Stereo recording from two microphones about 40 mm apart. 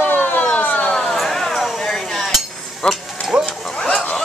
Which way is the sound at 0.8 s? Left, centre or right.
Left.